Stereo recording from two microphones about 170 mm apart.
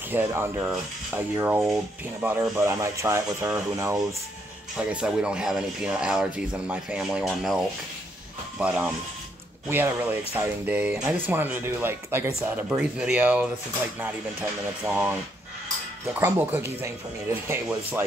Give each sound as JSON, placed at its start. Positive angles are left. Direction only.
{"t": 0.1, "sound": "speech", "side_deg": -15}
{"t": 4.7, "sound": "speech", "side_deg": -5}
{"t": 8.5, "sound": "speech", "side_deg": -5}
{"t": 16.1, "sound": "speech", "side_deg": -10}